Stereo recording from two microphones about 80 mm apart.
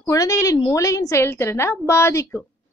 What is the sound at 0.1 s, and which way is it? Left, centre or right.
A woman's voice, left.